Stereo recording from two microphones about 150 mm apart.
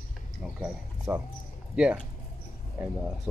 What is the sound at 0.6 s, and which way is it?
Speech, 5° right (ahead or behind).